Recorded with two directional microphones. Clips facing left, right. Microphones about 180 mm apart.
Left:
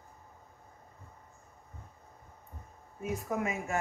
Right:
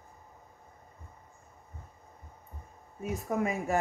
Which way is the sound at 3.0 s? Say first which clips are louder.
Right 2 dB; 35° right (ahead or behind).